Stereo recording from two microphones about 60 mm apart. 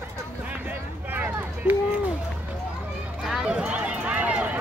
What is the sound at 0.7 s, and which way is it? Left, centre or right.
Vehicle, right.